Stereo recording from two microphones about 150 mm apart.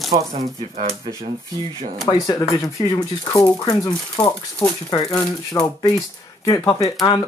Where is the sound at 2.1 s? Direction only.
25° left (ahead or behind).